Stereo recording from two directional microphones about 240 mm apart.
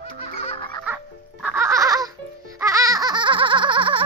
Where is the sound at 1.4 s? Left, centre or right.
Centre.